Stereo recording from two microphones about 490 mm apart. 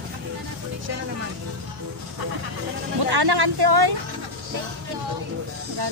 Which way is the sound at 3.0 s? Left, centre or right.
Right.